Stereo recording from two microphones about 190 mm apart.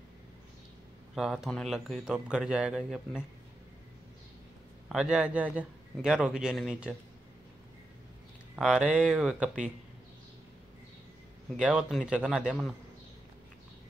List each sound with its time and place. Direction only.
1.1 s speech: centre (ahead or behind)
4.8 s speech: 5° right (ahead or behind)
8.5 s speech: 5° right (ahead or behind)
11.5 s speech: 5° right (ahead or behind)